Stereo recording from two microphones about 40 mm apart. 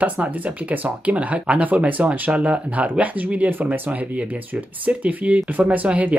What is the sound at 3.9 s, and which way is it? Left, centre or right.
Speech, right.